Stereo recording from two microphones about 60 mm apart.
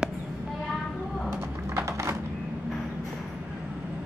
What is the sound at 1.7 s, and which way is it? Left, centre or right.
Crushing, right.